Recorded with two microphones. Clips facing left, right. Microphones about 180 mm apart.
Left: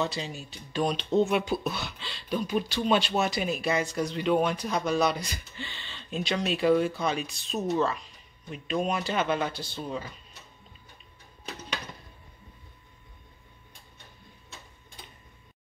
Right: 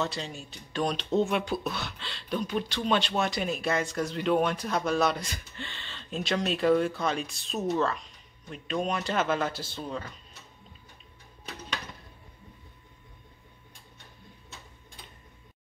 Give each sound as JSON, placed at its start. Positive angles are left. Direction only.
{"t": 0.0, "sound": "speech", "side_deg": 0}